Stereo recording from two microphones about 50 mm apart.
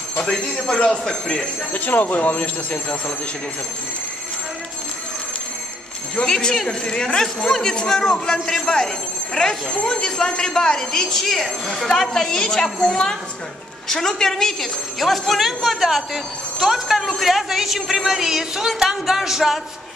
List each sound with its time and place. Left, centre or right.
0.2 s speech: centre
1.7 s speech: left
6.1 s a woman's voice: centre